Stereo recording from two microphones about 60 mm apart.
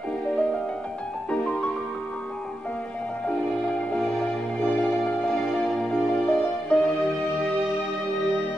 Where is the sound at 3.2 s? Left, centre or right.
Left.